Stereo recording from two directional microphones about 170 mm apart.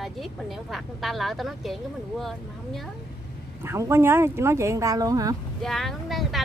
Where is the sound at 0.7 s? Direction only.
Centre (ahead or behind).